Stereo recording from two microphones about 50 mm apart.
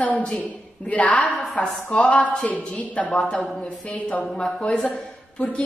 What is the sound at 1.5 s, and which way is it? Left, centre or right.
A woman's voice, centre.